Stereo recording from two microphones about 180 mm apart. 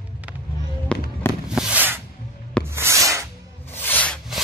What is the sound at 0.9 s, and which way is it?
Fireworks, 5° left (ahead or behind).